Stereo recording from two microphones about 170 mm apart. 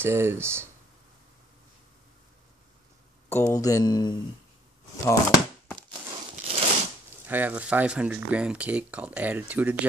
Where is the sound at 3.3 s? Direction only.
15° left (ahead or behind).